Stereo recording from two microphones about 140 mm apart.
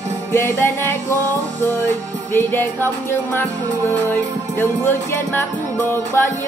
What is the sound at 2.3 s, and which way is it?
Music, 15° left (ahead or behind).